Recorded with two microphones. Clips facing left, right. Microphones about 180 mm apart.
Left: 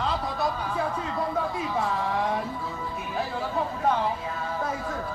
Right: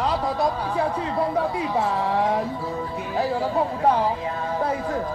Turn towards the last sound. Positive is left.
turn(degrees=-35)  # may be behind; listen again after turning